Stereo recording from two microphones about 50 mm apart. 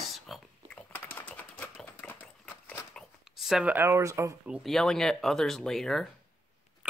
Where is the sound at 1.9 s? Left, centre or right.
Left.